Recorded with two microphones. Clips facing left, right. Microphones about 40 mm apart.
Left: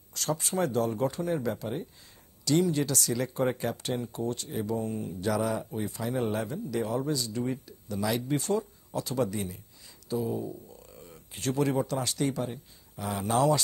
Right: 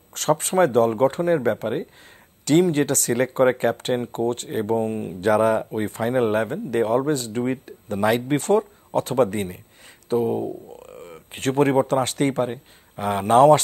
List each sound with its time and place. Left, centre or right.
0.1 s speech: right